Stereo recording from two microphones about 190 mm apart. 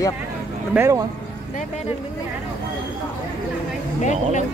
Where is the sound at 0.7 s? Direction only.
15° right (ahead or behind).